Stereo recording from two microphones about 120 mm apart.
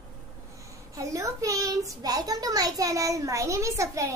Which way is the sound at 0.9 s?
25° right (ahead or behind).